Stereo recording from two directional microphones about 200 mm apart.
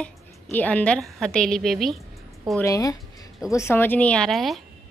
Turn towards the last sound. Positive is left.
turn(degrees=0)  # may be behind; listen again after turning